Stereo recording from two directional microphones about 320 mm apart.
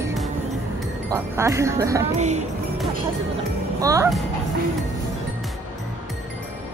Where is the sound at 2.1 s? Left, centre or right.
Right.